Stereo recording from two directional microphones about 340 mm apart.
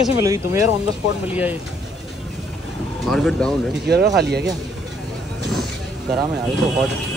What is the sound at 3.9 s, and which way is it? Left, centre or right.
Speech, right.